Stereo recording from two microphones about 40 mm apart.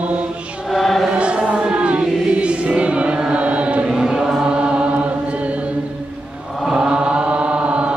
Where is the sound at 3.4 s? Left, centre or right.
Right.